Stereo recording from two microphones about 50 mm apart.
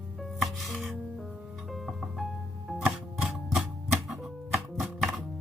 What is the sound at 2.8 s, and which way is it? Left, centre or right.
Music, centre.